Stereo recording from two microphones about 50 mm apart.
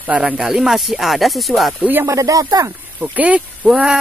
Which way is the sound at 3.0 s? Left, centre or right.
Right.